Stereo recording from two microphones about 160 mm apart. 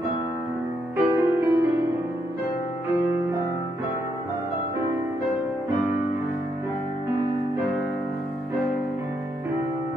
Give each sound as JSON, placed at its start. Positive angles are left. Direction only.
{"t": 0.9, "sound": "music", "side_deg": -15}